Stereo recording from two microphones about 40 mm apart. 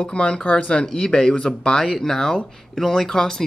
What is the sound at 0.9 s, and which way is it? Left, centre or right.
Speech, centre.